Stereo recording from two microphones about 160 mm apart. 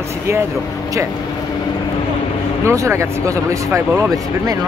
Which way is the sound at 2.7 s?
15° right (ahead or behind).